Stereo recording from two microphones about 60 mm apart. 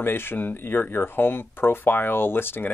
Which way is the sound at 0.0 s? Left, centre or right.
Left.